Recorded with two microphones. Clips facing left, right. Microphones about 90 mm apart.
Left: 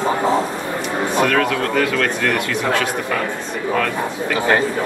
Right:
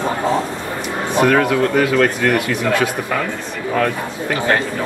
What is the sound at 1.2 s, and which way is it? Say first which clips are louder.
Speech: right 5 dB; 15° right (ahead or behind).